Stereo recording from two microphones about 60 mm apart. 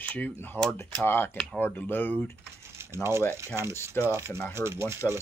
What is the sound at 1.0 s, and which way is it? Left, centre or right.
Speech, left.